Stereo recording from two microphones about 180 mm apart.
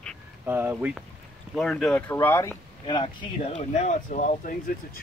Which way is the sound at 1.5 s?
5° left (ahead or behind).